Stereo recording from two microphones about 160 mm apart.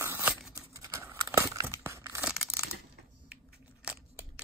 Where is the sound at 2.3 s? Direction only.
5° right (ahead or behind).